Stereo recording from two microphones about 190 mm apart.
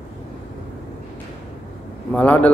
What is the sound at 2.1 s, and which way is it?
Speech, 10° left (ahead or behind).